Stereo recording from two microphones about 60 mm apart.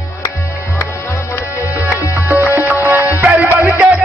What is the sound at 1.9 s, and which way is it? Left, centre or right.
Music, left.